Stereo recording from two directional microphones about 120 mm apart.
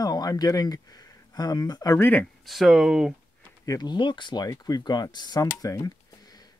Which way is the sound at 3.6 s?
35° left (ahead or behind).